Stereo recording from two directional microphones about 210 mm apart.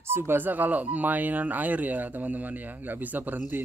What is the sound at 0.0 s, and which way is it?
Speech, 10° right (ahead or behind).